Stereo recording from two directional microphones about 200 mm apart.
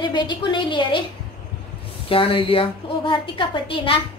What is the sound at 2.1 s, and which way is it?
A woman's voice, 25° left (ahead or behind).